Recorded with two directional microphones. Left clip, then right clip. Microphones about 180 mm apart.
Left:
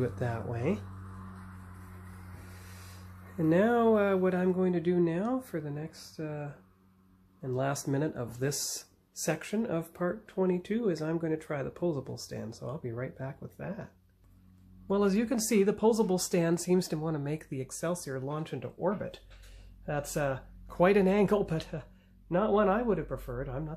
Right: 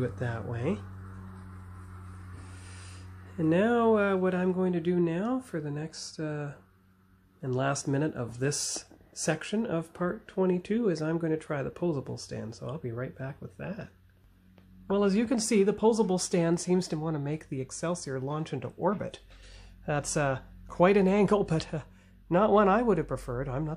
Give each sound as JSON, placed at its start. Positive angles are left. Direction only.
{"t": 0.0, "sound": "speech", "side_deg": 5}
{"t": 3.3, "sound": "speech", "side_deg": 0}
{"t": 14.9, "sound": "speech", "side_deg": -5}